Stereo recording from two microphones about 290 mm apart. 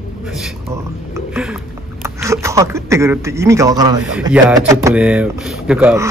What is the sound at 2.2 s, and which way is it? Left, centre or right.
A man's voice, centre.